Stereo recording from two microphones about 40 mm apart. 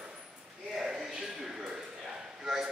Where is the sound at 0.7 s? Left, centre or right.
Centre.